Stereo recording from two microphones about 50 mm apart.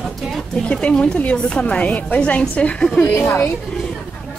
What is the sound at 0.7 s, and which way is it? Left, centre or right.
A woman's voice, left.